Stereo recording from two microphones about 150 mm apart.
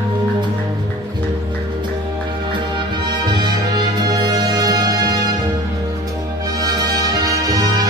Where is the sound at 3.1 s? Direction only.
30° right (ahead or behind).